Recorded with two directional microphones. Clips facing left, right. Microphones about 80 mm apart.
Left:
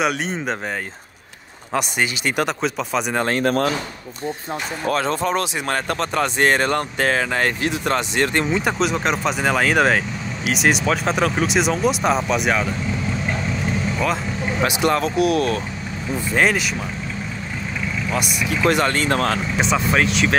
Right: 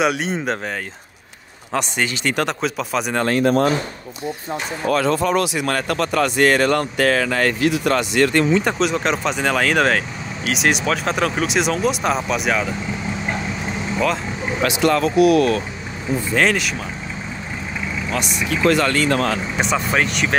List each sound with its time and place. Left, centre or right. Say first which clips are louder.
0.0 s speech: right 2 dB; centre
1.7 s speech: even; centre
2.6 s speech: even; centre
3.3 s speech: right 5 dB; left
4.9 s speech: right 4 dB; left
8.5 s speech: right 2 dB; centre
14.6 s speech: right 2 dB; left
18.1 s speech: even; centre
18.7 s speech: right 2 dB; left
19.5 s speech: left 1 dB; centre